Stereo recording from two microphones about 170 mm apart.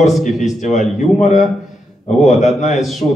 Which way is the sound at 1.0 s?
45° left (ahead or behind).